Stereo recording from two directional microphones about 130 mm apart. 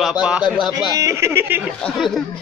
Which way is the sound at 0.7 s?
25° right (ahead or behind).